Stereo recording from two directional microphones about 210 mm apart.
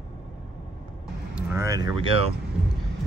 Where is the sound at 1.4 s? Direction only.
10° right (ahead or behind).